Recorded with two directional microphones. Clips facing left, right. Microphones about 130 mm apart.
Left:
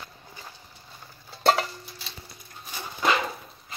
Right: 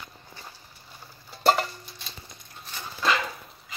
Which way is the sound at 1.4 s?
Centre (ahead or behind).